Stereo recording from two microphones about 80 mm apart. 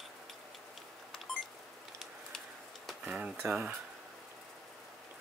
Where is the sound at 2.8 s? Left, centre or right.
Centre.